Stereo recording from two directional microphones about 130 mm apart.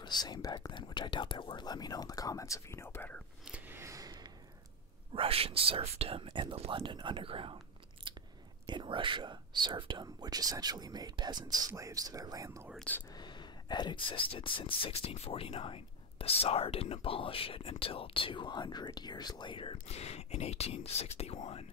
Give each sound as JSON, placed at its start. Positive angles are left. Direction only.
{"t": 0.0, "sound": "speech", "side_deg": 30}
{"t": 3.4, "sound": "a sound", "side_deg": -10}
{"t": 5.1, "sound": "speech", "side_deg": -45}
{"t": 8.1, "sound": "biting", "side_deg": -40}
{"t": 8.6, "sound": "speech", "side_deg": -40}
{"t": 13.1, "sound": "a sound", "side_deg": 35}
{"t": 14.3, "sound": "speech", "side_deg": 40}